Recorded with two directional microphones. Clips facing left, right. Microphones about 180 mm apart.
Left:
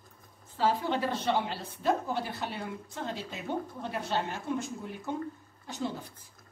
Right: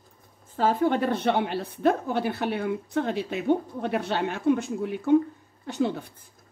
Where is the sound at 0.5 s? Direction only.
50° right (ahead or behind).